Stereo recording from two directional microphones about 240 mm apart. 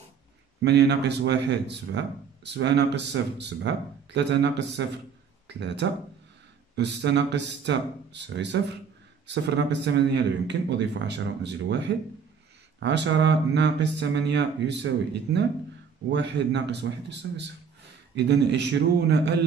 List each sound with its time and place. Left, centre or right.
0.6 s speech: right
16.1 s speech: right